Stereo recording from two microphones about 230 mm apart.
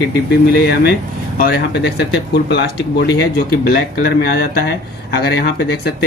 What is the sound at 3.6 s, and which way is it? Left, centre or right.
Speech, left.